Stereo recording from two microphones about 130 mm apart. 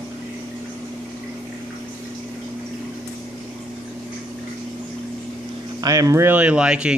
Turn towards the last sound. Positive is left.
turn(degrees=-10)  # may be behind; listen again after turning